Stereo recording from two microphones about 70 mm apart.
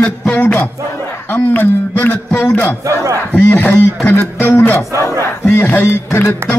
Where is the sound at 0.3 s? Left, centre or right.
Left.